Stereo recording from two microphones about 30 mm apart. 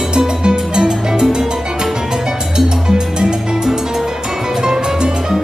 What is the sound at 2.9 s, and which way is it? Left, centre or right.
Music, right.